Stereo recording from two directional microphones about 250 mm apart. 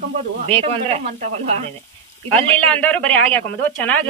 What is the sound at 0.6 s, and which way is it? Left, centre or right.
Speech, right.